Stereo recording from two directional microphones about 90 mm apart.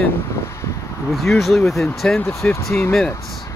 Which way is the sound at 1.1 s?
Centre (ahead or behind).